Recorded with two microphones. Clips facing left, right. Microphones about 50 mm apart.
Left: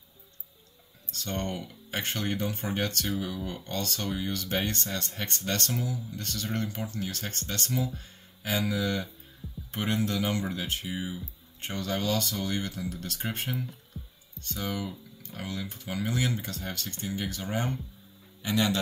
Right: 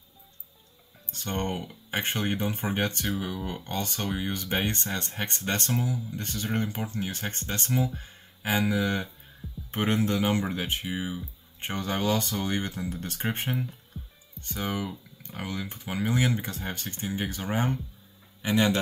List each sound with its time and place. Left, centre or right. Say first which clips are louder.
1.0 s speech: right 2 dB; right